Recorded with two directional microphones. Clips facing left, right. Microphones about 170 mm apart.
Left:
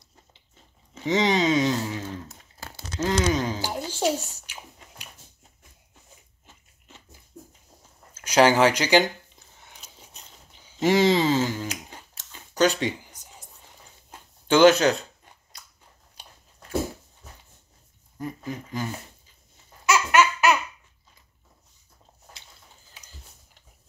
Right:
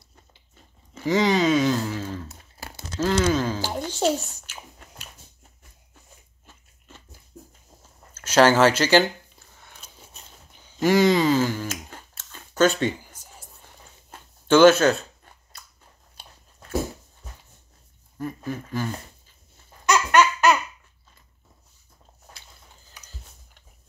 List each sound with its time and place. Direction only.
0.9 s speech: 20° left (ahead or behind)
2.2 s crumpling: 10° right (ahead or behind)
3.0 s a child's voice: 20° left (ahead or behind)
6.4 s biting: 15° left (ahead or behind)
8.1 s a sound: 15° left (ahead or behind)
14.5 s a sound: 15° left (ahead or behind)
18.1 s speech: 15° left (ahead or behind)
19.9 s baby laughter: 5° left (ahead or behind)
22.3 s a sound: 20° left (ahead or behind)